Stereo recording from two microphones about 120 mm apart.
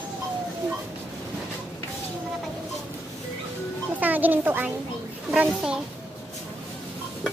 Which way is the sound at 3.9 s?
15° right (ahead or behind).